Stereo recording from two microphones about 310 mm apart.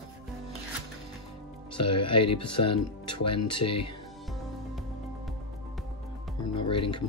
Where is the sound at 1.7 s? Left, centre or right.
Centre.